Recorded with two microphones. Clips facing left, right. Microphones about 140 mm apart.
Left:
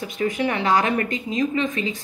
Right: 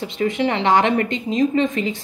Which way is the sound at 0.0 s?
25° right (ahead or behind).